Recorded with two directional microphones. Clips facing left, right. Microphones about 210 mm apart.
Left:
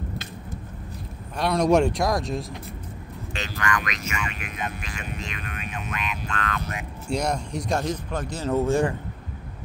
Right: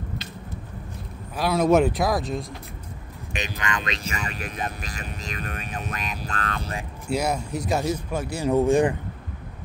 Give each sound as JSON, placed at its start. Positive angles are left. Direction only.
{"t": 1.3, "sound": "speech", "side_deg": -5}
{"t": 3.3, "sound": "speech", "side_deg": -20}
{"t": 7.1, "sound": "speech", "side_deg": -5}